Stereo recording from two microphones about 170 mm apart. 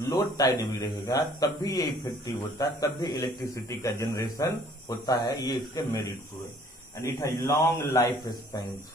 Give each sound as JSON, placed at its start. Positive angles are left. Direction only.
{"t": 0.1, "sound": "a man's voice", "side_deg": 20}